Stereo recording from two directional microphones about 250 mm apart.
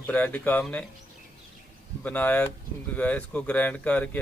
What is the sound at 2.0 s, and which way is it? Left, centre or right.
Speech, centre.